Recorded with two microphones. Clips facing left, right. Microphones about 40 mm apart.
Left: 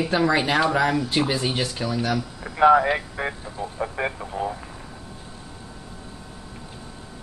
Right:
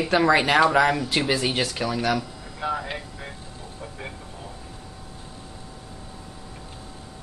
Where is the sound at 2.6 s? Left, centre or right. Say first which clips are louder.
Left 13 dB; left.